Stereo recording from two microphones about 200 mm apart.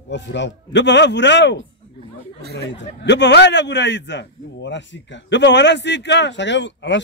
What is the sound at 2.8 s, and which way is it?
A man's voice, 60° left (ahead or behind).